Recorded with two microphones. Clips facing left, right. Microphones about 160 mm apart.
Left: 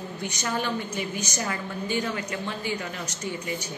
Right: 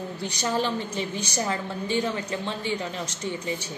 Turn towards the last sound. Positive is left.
turn(degrees=-25)  # may be behind; listen again after turning